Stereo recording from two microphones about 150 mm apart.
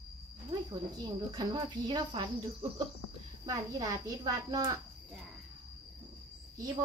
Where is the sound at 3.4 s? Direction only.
25° right (ahead or behind).